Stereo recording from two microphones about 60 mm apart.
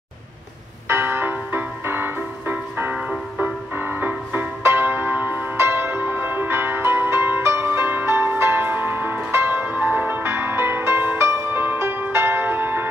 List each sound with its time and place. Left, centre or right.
0.8 s music: right
2.9 s music: centre
3.7 s music: right